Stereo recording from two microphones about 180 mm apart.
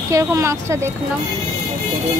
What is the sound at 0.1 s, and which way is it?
Speech, 15° right (ahead or behind).